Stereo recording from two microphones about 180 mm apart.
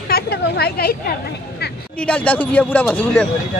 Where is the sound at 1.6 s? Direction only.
60° left (ahead or behind).